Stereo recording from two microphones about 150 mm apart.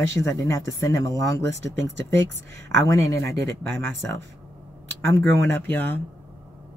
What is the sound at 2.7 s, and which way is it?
Speech, 20° left (ahead or behind).